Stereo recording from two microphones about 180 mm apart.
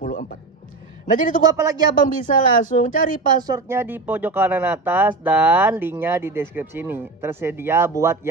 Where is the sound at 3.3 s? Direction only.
20° right (ahead or behind).